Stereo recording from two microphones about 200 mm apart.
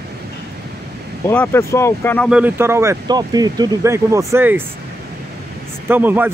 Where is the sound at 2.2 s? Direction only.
5° right (ahead or behind).